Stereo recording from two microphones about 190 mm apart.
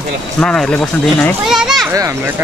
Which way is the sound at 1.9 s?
15° right (ahead or behind).